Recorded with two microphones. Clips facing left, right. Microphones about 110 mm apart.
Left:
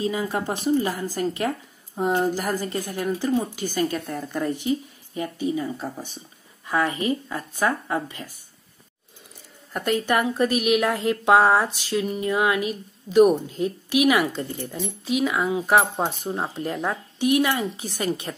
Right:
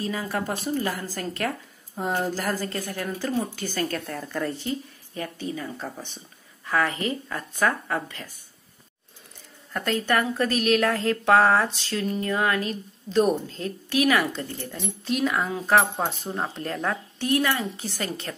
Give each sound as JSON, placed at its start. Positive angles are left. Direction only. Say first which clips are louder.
{"t": 0.0, "sound": "a woman's voice", "louder": "left 3 dB", "side_deg": 20}
{"t": 9.7, "sound": "a woman's voice", "louder": "left 2 dB", "side_deg": 15}